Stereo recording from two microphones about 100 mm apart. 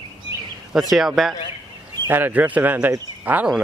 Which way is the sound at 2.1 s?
20° right (ahead or behind).